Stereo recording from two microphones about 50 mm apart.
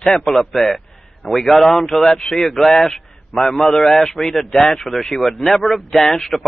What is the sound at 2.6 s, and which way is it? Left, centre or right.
A man's voice, centre.